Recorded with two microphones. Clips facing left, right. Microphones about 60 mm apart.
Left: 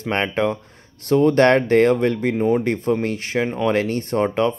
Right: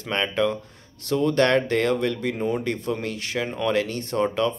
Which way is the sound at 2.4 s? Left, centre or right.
Left.